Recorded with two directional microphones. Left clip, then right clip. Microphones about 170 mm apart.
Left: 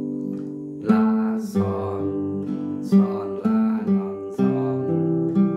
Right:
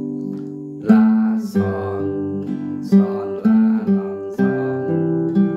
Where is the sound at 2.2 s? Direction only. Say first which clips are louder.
Right 2 dB; 35° right (ahead or behind).